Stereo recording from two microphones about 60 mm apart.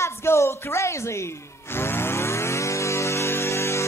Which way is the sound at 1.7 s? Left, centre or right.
Left.